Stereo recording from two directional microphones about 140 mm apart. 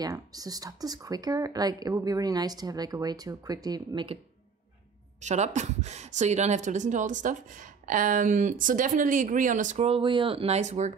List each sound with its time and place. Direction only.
0.0 s speech: 25° right (ahead or behind)
5.2 s speech: 55° right (ahead or behind)